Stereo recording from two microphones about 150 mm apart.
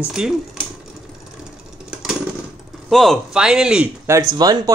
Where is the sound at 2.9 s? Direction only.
Centre (ahead or behind).